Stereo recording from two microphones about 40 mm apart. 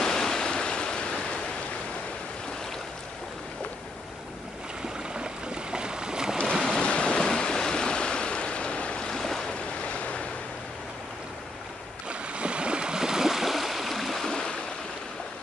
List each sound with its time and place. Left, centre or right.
0.0 s a sound: centre
5.1 s boat: right
6.8 s a sound: left
7.2 s stream: centre
9.1 s waves: centre
9.8 s waves: left
12.1 s stream: right; by 14.3 s centre
14.3 s stream: centre